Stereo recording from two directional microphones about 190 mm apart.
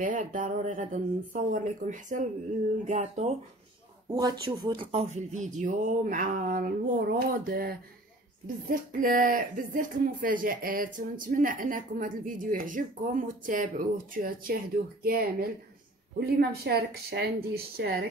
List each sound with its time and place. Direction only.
0.0 s speech: 45° right (ahead or behind)
4.1 s speech: 20° right (ahead or behind); by 14.6 s 50° right (ahead or behind)
16.3 s a woman's voice: 60° right (ahead or behind)